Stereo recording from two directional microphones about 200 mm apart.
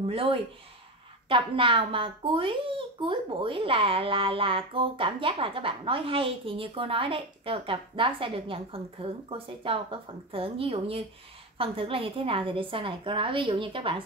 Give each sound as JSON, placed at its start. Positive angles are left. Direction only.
{"t": 0.0, "sound": "speech", "side_deg": -25}